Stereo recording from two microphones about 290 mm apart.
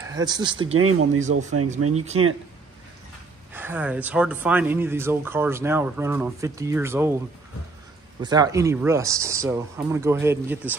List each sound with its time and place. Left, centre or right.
0.1 s speech: centre
0.7 s speech: right
2.0 s speech: right
3.5 s speech: centre
8.2 s speech: centre